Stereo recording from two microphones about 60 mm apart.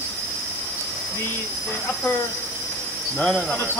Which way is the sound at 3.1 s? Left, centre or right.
Left.